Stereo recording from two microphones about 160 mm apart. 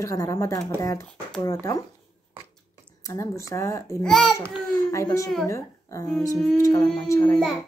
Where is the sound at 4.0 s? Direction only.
Centre (ahead or behind).